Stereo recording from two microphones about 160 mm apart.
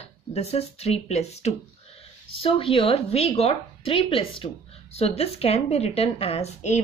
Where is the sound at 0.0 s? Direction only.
40° left (ahead or behind).